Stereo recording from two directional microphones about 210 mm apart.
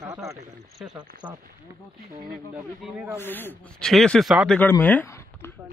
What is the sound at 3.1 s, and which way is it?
A man's voice, 10° left (ahead or behind).